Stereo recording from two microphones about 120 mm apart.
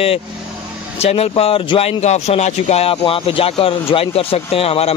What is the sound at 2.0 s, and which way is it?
Speech, 65° left (ahead or behind).